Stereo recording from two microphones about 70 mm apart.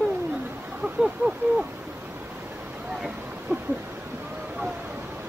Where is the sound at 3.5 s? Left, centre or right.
Right.